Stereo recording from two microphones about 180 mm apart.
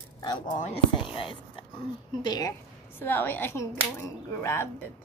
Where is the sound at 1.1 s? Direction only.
30° left (ahead or behind).